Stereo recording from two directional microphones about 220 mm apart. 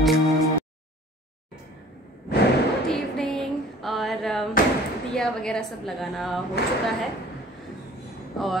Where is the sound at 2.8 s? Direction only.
Centre (ahead or behind).